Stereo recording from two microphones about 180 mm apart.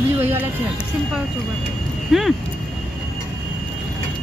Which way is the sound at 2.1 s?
Centre (ahead or behind).